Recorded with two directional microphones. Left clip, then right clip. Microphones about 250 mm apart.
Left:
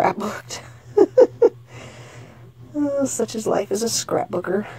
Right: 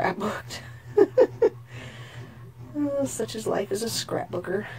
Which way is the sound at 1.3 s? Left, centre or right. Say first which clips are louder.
Left 6 dB; centre.